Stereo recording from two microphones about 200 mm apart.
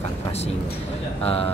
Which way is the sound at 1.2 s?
30° left (ahead or behind).